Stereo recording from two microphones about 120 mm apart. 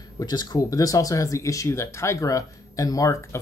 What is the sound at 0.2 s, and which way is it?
Speech, 35° left (ahead or behind).